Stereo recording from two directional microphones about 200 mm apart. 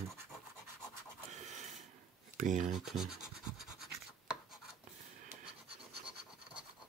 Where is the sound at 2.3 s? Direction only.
40° right (ahead or behind).